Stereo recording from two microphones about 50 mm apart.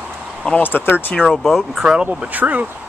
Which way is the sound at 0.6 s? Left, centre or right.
Left.